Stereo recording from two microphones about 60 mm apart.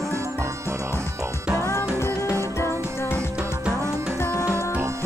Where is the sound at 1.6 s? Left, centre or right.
Left.